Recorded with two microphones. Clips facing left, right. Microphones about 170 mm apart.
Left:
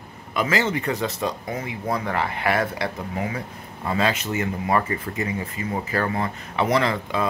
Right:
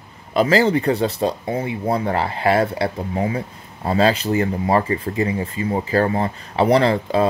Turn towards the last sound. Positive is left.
turn(degrees=-30)  # may be behind; listen again after turning